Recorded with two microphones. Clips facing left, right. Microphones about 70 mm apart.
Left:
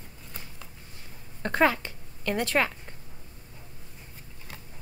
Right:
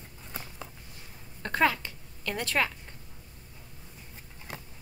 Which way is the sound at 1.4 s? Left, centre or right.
Left.